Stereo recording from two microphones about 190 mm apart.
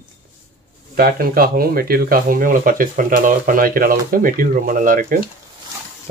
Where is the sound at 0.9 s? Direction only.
50° right (ahead or behind).